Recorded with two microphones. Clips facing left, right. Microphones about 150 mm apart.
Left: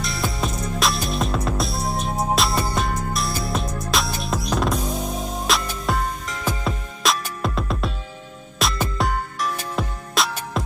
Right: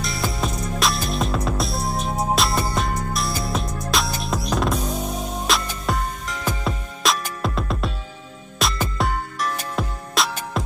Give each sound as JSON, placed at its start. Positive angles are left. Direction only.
{"t": 0.0, "sound": "music", "side_deg": 0}